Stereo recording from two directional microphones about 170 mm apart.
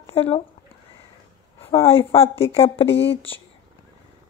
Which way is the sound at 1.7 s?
35° left (ahead or behind).